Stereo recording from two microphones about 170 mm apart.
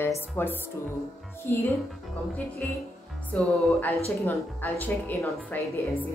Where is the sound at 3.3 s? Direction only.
5° left (ahead or behind).